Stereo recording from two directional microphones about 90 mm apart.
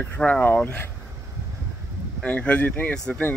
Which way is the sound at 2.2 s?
15° left (ahead or behind).